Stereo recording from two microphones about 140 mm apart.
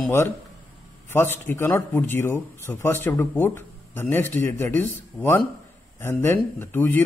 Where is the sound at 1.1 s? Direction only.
15° left (ahead or behind).